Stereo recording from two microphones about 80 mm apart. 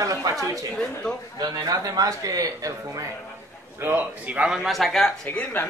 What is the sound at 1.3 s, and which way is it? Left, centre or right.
A man's voice, right.